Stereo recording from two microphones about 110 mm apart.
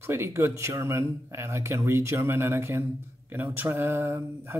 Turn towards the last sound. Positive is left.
turn(degrees=-20)  # may be behind; listen again after turning